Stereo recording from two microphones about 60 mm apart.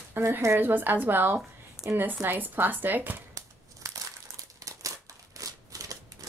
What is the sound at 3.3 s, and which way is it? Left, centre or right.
Crumpling, right.